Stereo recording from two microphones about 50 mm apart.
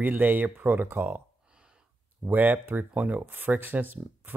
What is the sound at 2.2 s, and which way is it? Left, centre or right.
Speech, right.